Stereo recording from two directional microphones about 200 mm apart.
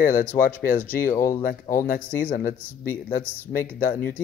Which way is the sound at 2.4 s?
45° left (ahead or behind).